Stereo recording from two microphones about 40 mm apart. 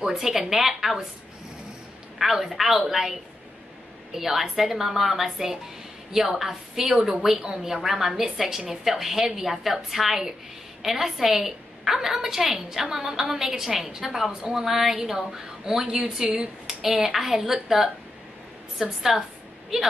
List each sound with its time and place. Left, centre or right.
0.1 s a woman's voice: centre
2.1 s a woman's voice: centre
15.8 s a woman's voice: right
16.6 s a woman's voice: centre